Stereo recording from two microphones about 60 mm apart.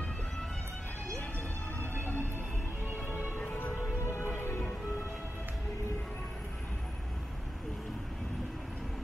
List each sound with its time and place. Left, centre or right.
1.8 s music: left
2.9 s music: right
3.5 s music: left